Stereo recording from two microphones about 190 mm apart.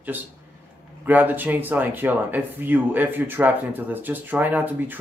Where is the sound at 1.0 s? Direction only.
10° right (ahead or behind).